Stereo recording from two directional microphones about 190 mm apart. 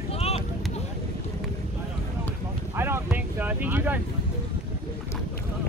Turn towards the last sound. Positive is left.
turn(degrees=-10)  # may be behind; listen again after turning